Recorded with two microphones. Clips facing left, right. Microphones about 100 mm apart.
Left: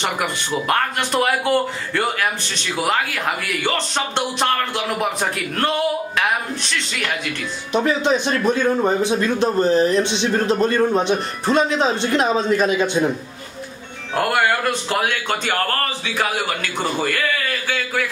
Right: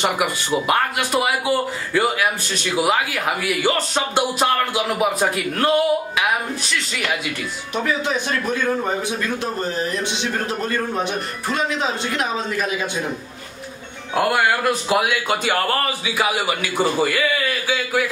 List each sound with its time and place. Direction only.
0.0 s a man's voice: 10° right (ahead or behind)
7.7 s a man's voice: 25° left (ahead or behind)
14.1 s a man's voice: 5° right (ahead or behind)